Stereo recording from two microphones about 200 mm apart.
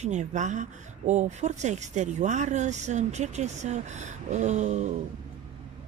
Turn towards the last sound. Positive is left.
turn(degrees=-35)  # may be behind; listen again after turning